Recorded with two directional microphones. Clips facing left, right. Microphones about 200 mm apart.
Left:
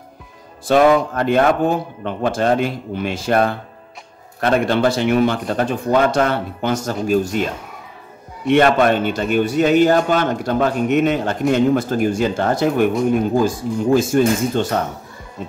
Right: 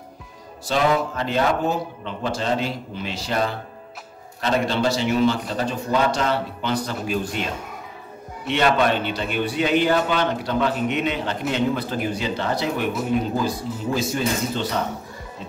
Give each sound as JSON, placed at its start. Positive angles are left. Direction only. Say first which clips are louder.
{"t": 0.7, "sound": "a man's voice", "louder": "left 7 dB", "side_deg": 55}
{"t": 8.5, "sound": "a man's voice", "louder": "left 6 dB", "side_deg": 50}